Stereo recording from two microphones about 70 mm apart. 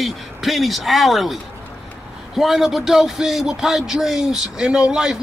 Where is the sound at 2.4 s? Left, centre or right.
Centre.